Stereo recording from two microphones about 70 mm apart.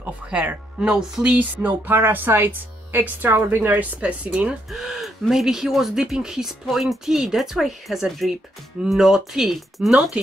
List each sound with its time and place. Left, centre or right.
0.0 s speech: right
4.6 s speech: centre